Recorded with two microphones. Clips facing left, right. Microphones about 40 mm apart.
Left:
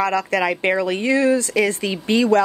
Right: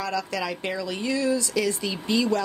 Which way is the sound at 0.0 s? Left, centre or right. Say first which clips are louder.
Left 9 dB; left.